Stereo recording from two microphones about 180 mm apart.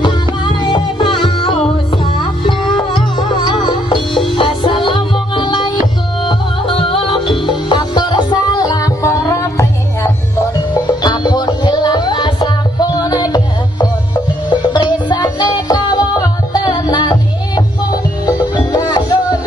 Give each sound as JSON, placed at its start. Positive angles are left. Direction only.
{"t": 0.6, "sound": "music", "side_deg": 25}
{"t": 4.1, "sound": "music", "side_deg": 0}
{"t": 4.4, "sound": "music", "side_deg": 30}